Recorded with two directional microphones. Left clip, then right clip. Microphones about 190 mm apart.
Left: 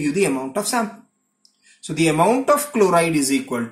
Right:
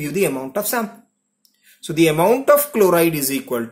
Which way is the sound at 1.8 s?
35° right (ahead or behind).